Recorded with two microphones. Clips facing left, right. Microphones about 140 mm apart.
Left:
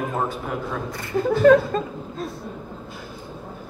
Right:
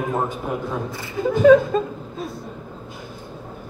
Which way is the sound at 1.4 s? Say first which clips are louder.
Right 3 dB; centre (ahead or behind).